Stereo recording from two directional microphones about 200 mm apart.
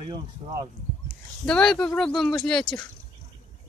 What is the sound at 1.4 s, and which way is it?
Speech, 5° left (ahead or behind).